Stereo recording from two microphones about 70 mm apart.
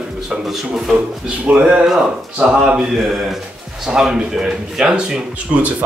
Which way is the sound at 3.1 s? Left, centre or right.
Centre.